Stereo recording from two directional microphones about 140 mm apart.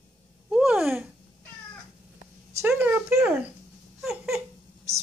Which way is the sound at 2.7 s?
5° right (ahead or behind).